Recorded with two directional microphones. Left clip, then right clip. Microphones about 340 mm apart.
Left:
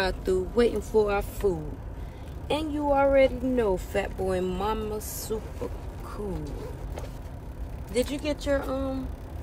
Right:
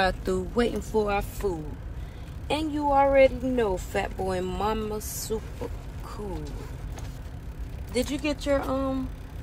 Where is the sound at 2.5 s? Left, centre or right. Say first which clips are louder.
Right 1 dB; centre.